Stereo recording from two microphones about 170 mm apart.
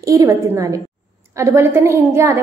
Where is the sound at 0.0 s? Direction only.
20° right (ahead or behind).